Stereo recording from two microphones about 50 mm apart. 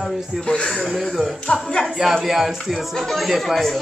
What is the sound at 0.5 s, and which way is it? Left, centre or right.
Speech, centre.